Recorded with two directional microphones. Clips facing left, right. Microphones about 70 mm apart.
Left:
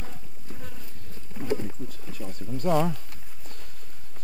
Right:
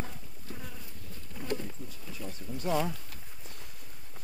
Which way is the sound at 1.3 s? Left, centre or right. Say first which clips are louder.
Left 6 dB; centre.